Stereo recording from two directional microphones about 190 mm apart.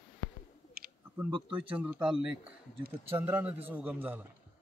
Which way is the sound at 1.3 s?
25° right (ahead or behind).